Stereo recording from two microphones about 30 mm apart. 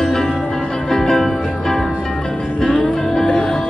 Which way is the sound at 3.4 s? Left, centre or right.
Left.